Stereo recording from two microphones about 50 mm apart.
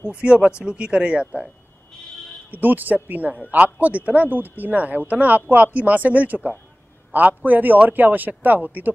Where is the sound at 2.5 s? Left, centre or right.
Right.